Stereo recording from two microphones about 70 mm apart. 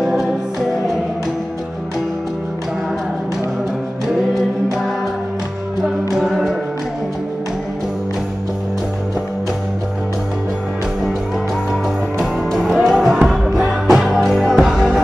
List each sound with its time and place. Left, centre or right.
0.0 s music: centre
6.0 s a capella: centre
12.5 s music: centre